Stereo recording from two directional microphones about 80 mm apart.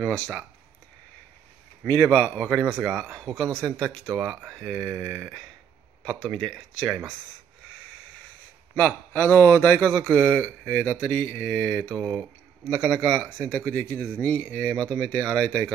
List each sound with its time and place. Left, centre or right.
0.0 s a man's voice: centre
1.9 s a man's voice: centre
2.7 s a man's voice: centre
8.7 s a man's voice: left